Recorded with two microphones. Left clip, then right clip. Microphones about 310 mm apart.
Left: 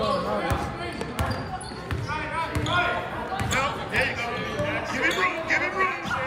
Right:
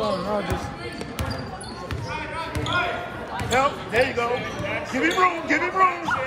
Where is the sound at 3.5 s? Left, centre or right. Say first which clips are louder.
Right 6 dB; centre.